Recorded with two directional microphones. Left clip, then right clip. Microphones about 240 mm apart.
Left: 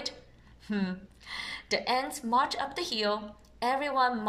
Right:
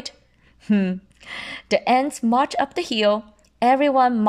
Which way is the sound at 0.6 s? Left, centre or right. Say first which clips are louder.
Right 11 dB; right.